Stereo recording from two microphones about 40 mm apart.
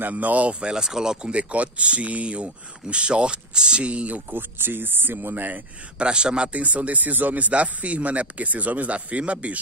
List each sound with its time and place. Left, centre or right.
0.1 s speech: right
4.3 s speech: right
5.9 s speech: right
6.5 s speech: right